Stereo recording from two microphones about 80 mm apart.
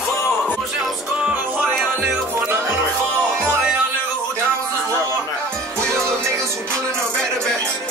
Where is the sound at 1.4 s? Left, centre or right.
Right.